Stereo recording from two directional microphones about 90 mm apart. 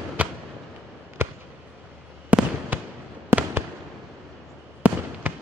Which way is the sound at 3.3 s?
30° right (ahead or behind).